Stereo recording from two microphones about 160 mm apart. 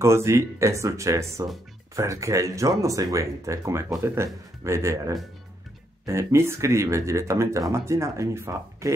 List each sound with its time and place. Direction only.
0.0 s speech: 15° right (ahead or behind)